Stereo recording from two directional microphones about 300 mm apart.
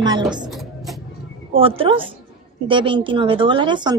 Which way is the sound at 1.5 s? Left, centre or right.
Centre.